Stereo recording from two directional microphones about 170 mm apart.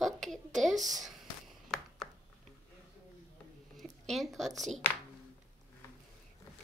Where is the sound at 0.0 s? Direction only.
Centre (ahead or behind).